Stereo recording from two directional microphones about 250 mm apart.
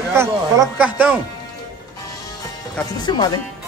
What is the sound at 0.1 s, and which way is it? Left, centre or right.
Speech, centre.